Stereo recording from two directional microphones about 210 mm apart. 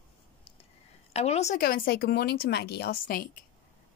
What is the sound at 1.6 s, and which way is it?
A woman's voice, 45° left (ahead or behind).